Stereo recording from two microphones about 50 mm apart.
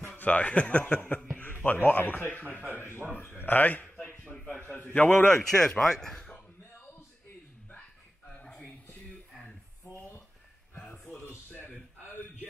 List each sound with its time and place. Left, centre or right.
0.0 s a man's voice: left
1.4 s a man's voice: left
2.7 s speech: left
3.1 s a man's voice: left
3.8 s a sound: centre
4.7 s a man's voice: left
5.5 s speech: centre
8.4 s a sound: left
11.1 s a sound: left